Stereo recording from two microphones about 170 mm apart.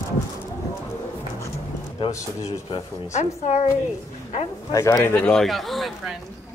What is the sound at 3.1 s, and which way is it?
Speech, 45° left (ahead or behind).